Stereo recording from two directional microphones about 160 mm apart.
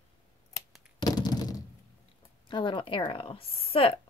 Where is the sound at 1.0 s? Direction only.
25° left (ahead or behind).